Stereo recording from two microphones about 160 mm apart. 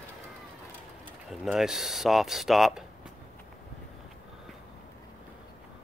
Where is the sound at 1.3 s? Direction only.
Centre (ahead or behind).